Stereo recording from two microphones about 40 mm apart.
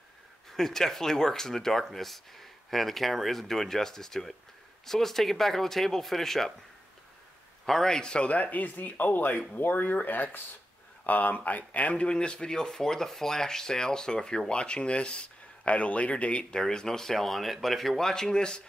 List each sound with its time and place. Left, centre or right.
0.5 s speech: centre
7.6 s speech: centre
8.4 s speech: left
12.1 s speech: left